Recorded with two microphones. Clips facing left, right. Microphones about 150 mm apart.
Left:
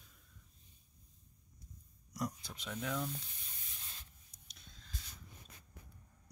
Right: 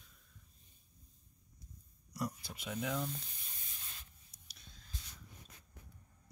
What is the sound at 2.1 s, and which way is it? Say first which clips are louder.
Speech: even; centre (ahead or behind).